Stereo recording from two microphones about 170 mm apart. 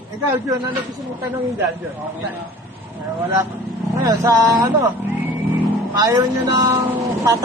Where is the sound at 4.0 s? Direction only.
20° right (ahead or behind).